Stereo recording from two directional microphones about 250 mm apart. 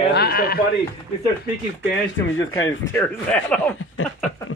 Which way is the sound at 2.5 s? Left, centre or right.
Centre.